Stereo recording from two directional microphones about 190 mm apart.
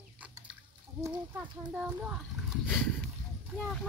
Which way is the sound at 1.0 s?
20° right (ahead or behind).